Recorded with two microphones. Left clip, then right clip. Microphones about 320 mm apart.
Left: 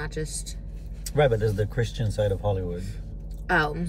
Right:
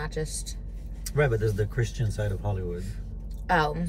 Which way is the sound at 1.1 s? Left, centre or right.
Centre.